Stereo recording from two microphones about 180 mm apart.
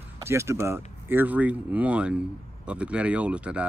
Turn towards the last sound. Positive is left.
turn(degrees=-5)  # may be behind; listen again after turning